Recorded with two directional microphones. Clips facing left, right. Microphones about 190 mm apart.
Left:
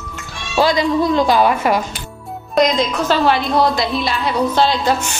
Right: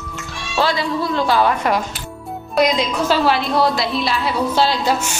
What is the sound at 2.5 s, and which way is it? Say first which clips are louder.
A woman's voice: left 2 dB; 5° right (ahead or behind).